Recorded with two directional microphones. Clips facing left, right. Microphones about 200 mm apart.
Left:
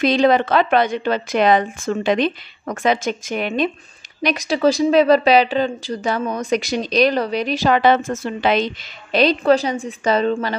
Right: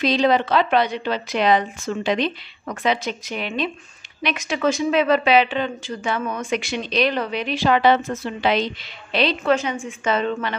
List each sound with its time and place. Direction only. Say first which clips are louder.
0.0 s a woman's voice: left 3 dB; 50° left (ahead or behind)